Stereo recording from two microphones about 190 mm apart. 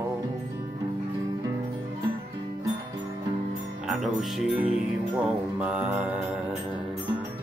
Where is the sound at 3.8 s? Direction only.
Centre (ahead or behind).